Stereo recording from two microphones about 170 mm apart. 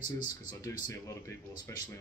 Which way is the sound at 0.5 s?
20° left (ahead or behind).